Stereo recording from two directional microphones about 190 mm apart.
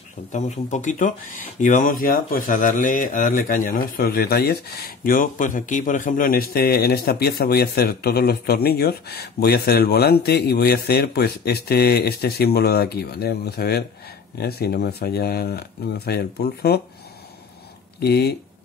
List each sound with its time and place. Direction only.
0.3 s speech: 40° left (ahead or behind); by 16.8 s 60° left (ahead or behind)
18.0 s speech: 60° left (ahead or behind)